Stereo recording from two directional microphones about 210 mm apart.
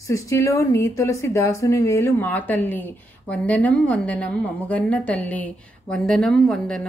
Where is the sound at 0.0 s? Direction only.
15° left (ahead or behind).